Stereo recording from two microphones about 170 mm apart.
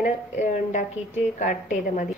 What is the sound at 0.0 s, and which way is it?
A woman's voice, 45° left (ahead or behind).